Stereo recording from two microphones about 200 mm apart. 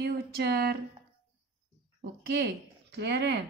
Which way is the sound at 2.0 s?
55° right (ahead or behind).